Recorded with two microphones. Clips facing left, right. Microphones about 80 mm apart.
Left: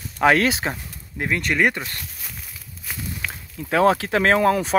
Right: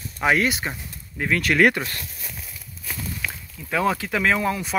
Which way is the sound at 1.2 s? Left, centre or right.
Left.